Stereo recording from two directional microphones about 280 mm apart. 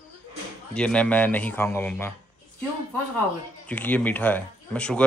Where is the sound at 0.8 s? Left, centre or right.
Centre.